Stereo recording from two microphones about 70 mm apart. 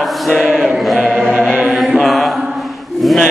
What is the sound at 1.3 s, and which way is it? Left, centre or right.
Chant, centre.